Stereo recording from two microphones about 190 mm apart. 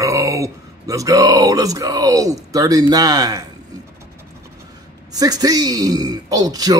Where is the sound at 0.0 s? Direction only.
15° right (ahead or behind).